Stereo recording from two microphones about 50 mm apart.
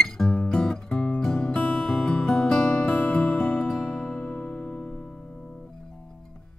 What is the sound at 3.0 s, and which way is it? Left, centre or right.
Music, left.